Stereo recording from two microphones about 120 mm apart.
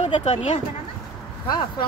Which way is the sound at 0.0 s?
60° left (ahead or behind).